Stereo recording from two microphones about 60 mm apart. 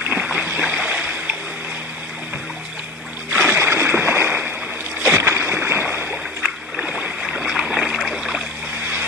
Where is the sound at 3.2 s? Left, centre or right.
Right.